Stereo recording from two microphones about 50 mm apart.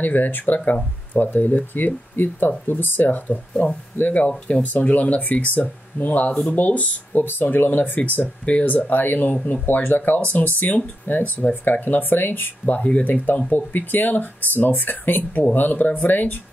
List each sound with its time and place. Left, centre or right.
0.0 s speech: left
12.6 s speech: left
13.0 s speech: left